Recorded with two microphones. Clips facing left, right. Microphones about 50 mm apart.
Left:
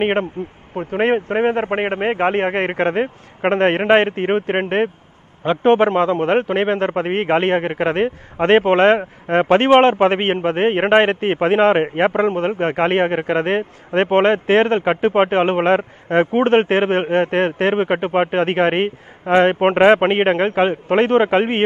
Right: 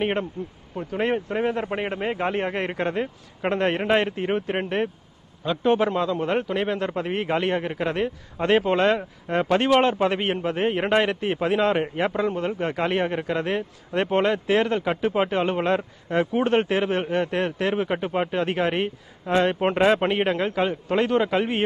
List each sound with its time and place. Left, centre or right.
0.0 s a man's voice: left